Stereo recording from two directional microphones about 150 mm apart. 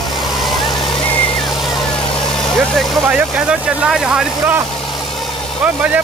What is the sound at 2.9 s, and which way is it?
Speech, 5° right (ahead or behind).